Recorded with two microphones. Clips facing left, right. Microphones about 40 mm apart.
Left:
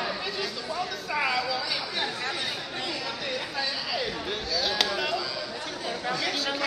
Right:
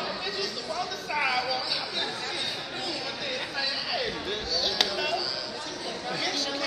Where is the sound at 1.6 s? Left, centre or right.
Centre.